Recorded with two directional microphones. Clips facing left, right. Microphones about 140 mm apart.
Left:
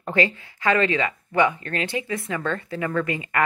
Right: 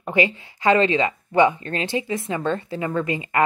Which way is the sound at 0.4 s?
25° right (ahead or behind).